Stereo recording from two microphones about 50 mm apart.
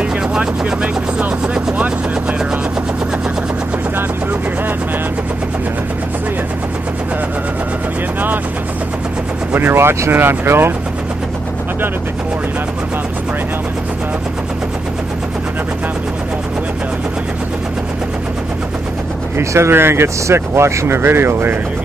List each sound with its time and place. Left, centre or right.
0.3 s speech: centre
9.6 s speech: right
19.5 s speech: right